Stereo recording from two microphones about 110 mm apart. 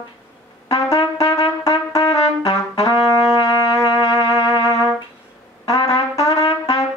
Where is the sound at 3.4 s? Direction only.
35° left (ahead or behind).